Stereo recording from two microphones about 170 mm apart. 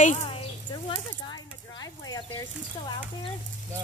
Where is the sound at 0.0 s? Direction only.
40° left (ahead or behind).